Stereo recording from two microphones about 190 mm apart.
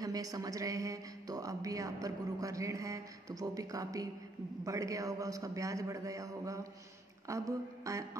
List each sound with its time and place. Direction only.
0.0 s speech: 20° right (ahead or behind)